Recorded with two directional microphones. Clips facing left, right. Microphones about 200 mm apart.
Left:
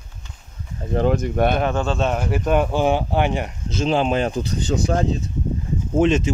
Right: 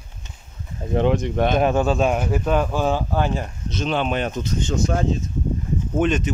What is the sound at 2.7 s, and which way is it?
Speech, 20° left (ahead or behind).